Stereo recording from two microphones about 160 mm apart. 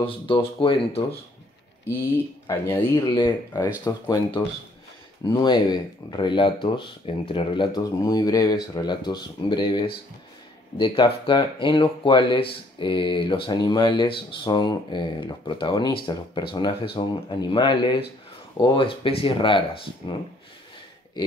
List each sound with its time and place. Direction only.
0.0 s speech: 35° left (ahead or behind)
2.1 s speech: 15° left (ahead or behind)
3.2 s speech: 25° left (ahead or behind)